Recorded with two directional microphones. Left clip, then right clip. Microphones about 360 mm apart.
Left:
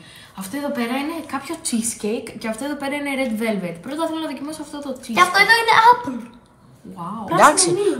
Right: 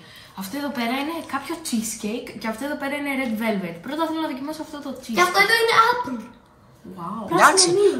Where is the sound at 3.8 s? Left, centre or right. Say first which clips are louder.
Even; centre.